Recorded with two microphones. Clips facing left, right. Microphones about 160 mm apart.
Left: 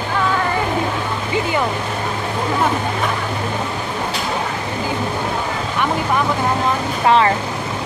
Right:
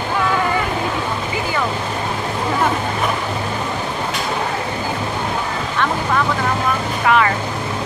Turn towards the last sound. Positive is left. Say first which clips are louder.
# left 2 dB
turn(degrees=30)  # may be behind; listen again after turning